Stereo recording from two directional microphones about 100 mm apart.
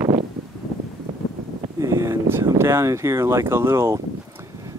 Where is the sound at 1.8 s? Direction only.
30° right (ahead or behind).